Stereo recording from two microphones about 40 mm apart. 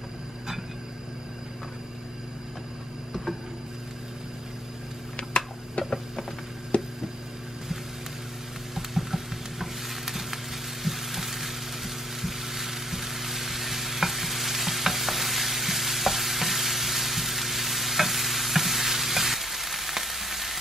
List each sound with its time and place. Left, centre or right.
5.3 s tick-tock: centre
6.7 s a sound: left
8.7 s stir: centre